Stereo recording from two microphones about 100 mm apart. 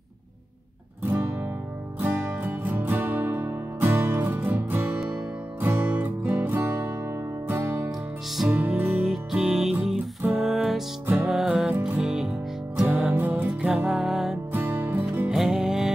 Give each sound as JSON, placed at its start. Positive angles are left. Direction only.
{"t": 1.1, "sound": "music", "side_deg": -25}
{"t": 9.0, "sound": "music", "side_deg": -5}
{"t": 12.8, "sound": "music", "side_deg": -15}
{"t": 13.5, "sound": "music", "side_deg": -5}
{"t": 14.5, "sound": "music", "side_deg": -20}
{"t": 15.2, "sound": "music", "side_deg": -5}